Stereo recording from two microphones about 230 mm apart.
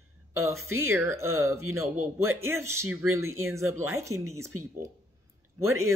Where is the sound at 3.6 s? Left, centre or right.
Right.